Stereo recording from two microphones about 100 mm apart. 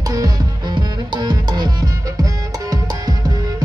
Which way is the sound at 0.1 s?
40° right (ahead or behind).